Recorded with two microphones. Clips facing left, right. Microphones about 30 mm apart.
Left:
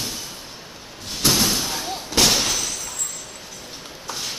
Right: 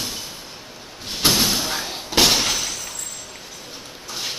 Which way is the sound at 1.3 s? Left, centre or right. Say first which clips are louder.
Right 1 dB; centre.